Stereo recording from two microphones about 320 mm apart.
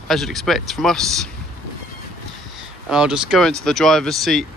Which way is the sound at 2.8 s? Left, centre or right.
Centre.